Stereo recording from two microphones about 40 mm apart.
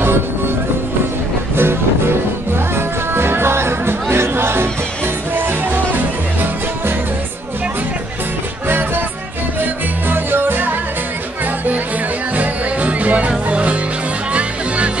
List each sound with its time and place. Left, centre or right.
1.6 s music: right
3.2 s music: right
8.6 s music: right
12.4 s music: right